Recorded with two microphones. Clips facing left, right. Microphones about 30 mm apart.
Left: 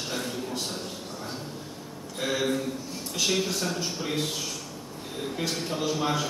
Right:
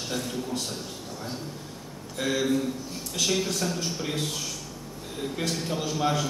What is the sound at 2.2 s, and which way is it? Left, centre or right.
Speech, centre.